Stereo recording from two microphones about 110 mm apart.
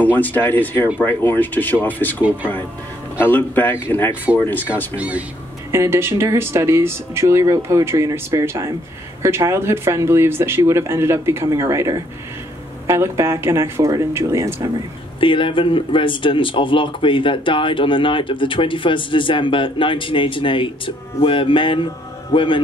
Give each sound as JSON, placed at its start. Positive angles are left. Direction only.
{"t": 0.0, "sound": "speech", "side_deg": 15}
{"t": 4.9, "sound": "speech", "side_deg": -10}
{"t": 5.7, "sound": "speech", "side_deg": -25}
{"t": 15.1, "sound": "speech", "side_deg": 50}